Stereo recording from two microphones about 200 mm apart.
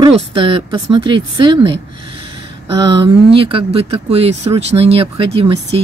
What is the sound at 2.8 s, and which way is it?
Speech, 25° right (ahead or behind).